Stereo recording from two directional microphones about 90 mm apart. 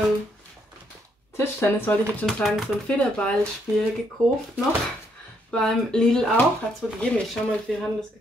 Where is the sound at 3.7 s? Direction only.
30° right (ahead or behind).